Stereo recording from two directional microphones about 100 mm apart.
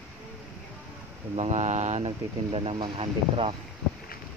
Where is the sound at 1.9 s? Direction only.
75° right (ahead or behind).